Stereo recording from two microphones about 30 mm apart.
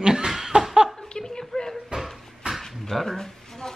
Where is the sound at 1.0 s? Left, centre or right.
Left.